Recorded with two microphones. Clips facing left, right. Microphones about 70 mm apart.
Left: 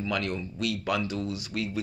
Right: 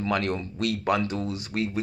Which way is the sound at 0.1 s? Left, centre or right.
Right.